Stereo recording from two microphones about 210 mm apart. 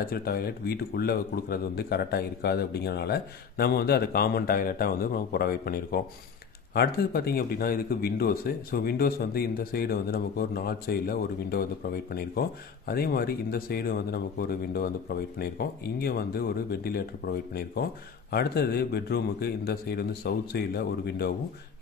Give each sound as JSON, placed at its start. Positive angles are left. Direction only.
{"t": 0.0, "sound": "a man's voice", "side_deg": 45}
{"t": 18.3, "sound": "a man's voice", "side_deg": 50}